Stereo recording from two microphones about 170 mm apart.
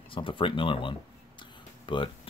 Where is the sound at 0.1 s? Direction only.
30° left (ahead or behind).